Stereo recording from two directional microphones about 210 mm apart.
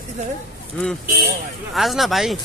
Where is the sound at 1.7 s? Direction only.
Centre (ahead or behind).